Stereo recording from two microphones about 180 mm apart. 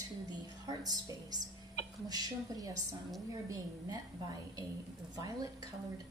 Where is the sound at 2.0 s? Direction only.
20° right (ahead or behind).